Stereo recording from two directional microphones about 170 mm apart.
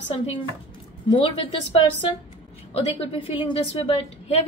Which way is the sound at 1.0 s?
30° left (ahead or behind).